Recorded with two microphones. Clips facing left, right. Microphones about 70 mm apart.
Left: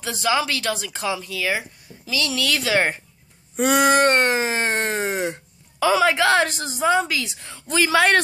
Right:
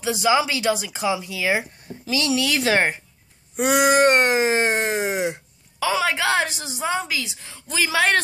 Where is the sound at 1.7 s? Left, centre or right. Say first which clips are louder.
Right 2 dB; right; by 2.7 s centre.